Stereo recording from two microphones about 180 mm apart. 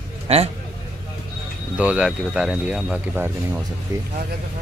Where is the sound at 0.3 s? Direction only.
35° right (ahead or behind).